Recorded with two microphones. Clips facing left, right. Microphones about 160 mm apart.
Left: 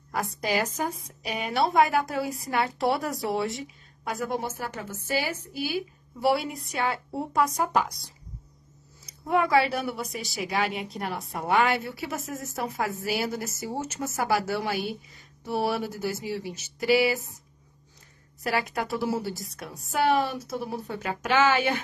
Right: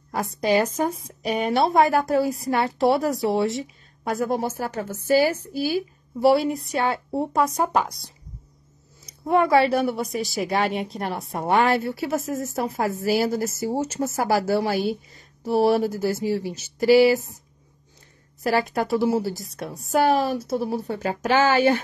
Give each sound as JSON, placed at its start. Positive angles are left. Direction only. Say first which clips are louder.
{"t": 0.1, "sound": "a woman's voice", "louder": "right 6 dB", "side_deg": -30}
{"t": 9.0, "sound": "speech", "louder": "right 5 dB", "side_deg": -30}
{"t": 18.4, "sound": "speech", "louder": "right 6 dB", "side_deg": -35}